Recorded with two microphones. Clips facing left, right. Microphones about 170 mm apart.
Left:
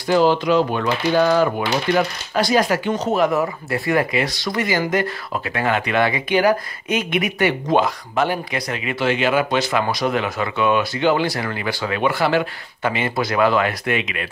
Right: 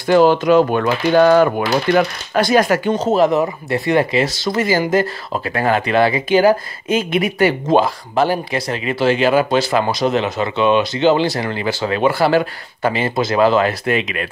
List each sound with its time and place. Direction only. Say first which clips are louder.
0.1 s speech: right 4 dB; 55° right (ahead or behind)
2.9 s speech: right 4 dB; 30° right (ahead or behind)
13.1 s speech: right 4 dB; 25° right (ahead or behind)